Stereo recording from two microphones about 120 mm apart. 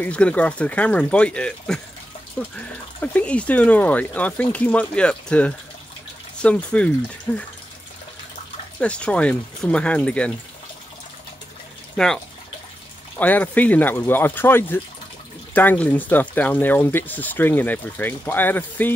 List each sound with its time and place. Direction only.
0.0 s speech: 10° left (ahead or behind)
8.7 s speech: 10° left (ahead or behind)
13.2 s speech: 15° left (ahead or behind)